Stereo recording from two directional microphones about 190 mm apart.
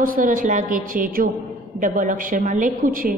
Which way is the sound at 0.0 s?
45° right (ahead or behind).